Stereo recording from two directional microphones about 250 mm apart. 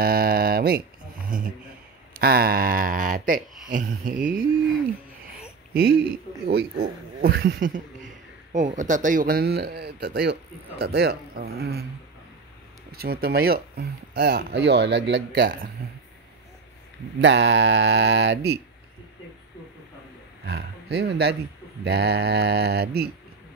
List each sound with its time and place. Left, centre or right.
0.0 s a sound: right
1.3 s speech: right
5.7 s speech: right
12.9 s speech: right
17.2 s speech: right
20.4 s speech: right